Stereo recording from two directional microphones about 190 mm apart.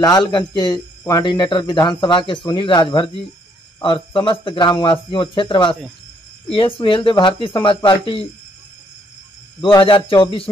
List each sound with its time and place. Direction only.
0.0 s speech: 20° left (ahead or behind)
6.8 s speech: 25° left (ahead or behind)
9.8 s speech: 30° left (ahead or behind)